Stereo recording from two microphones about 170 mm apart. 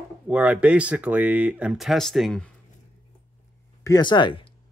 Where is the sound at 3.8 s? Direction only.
25° left (ahead or behind).